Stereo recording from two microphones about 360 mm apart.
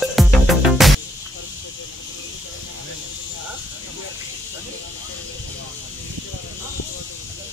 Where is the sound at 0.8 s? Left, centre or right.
Centre.